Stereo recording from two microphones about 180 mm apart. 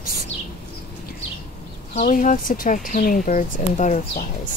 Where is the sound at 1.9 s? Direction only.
45° left (ahead or behind).